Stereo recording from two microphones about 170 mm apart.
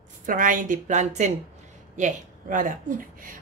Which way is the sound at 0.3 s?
50° right (ahead or behind).